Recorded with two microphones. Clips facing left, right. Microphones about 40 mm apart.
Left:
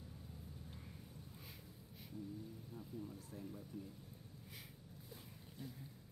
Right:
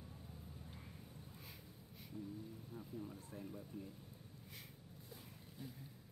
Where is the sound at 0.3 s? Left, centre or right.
Centre.